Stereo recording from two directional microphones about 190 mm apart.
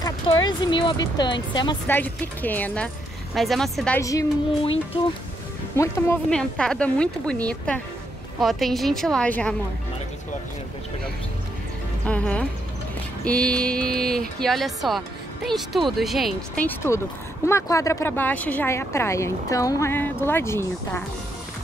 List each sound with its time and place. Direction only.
0.0 s speech: 20° left (ahead or behind)
1.9 s speech: 10° left (ahead or behind)
4.0 s speech: 15° left (ahead or behind)
5.8 s speech: 15° left (ahead or behind)
12.1 s speech: 5° left (ahead or behind)